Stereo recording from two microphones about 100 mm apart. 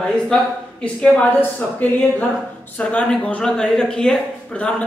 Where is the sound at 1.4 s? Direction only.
15° left (ahead or behind).